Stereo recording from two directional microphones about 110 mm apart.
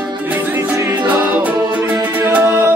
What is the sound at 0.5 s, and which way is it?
Music, 30° right (ahead or behind).